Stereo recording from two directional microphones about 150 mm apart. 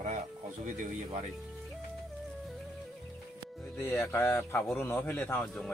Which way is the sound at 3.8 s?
15° left (ahead or behind).